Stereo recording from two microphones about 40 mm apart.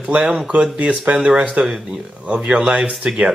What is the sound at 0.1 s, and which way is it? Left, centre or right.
Speech, right.